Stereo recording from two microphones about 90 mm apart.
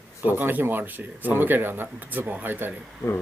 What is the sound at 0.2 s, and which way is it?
Speech, 20° right (ahead or behind).